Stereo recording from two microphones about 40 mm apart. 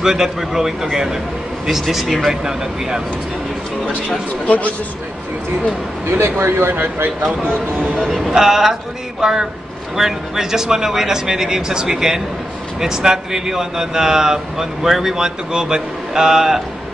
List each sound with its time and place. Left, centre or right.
0.0 s speech: centre
1.7 s speech: centre
6.0 s a man's voice: right
6.7 s speech: right
8.1 s speech: centre